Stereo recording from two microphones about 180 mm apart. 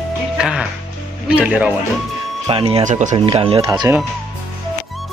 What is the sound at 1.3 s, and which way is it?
Speech, 10° right (ahead or behind).